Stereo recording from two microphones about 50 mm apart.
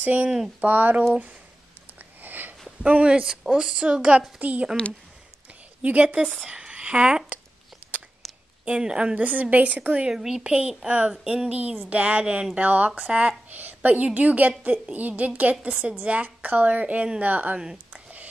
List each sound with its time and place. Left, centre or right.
0.0 s a woman's voice: right
2.2 s sniff: right
2.9 s a woman's voice: right
3.3 s a woman's voice: centre; by 4.6 s right
5.8 s a woman's voice: right
8.2 s a sound: centre
8.6 s a woman's voice: right
9.2 s a woman's voice: right
10.0 s a woman's voice: centre; by 17.6 s right
17.6 s speech: centre